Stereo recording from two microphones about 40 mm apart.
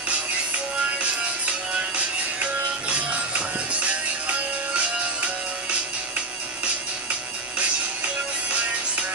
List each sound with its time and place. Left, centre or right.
0.9 s music: right
7.5 s music: right